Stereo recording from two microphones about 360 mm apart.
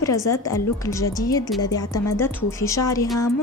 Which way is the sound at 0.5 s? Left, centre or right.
Centre.